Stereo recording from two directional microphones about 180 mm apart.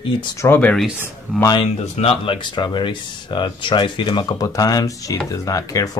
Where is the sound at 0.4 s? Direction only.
10° left (ahead or behind).